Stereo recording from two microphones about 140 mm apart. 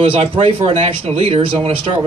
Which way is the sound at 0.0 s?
40° right (ahead or behind).